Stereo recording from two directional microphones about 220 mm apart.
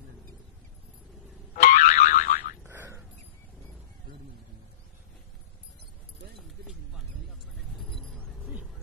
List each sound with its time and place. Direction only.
1.6 s boing: 35° left (ahead or behind)
2.6 s boing: 10° right (ahead or behind)
7.9 s a sound: centre (ahead or behind)